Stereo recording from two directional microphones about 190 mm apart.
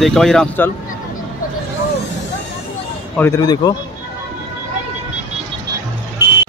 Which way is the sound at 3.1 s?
10° left (ahead or behind).